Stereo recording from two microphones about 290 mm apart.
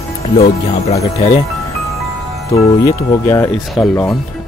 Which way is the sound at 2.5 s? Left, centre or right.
Centre.